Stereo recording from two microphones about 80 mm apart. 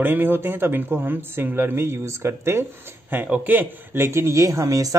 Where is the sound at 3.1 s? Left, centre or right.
Right.